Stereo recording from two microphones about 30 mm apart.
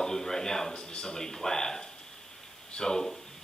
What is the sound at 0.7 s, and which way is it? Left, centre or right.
Speech, left.